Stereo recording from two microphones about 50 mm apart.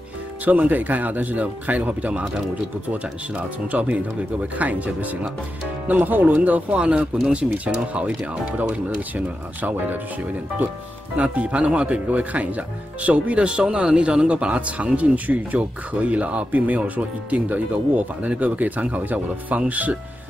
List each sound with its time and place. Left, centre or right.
0.5 s speech: right
3.3 s speech: right
11.2 s speech: right